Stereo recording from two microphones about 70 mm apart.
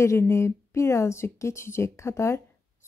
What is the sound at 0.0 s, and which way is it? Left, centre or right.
Speech, left.